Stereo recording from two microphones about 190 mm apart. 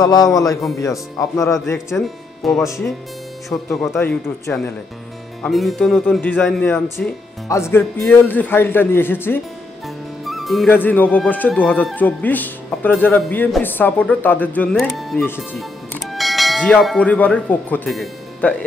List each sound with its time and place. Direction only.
0.0 s a man's voice: 20° left (ahead or behind)
2.0 s speech: centre (ahead or behind)
2.6 s speech: 15° left (ahead or behind)
5.4 s speech: centre (ahead or behind)
10.2 s music: centre (ahead or behind)
10.7 s speech: 10° left (ahead or behind)